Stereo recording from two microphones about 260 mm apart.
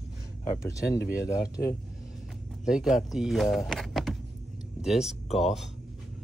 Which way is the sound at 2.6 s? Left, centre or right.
Centre.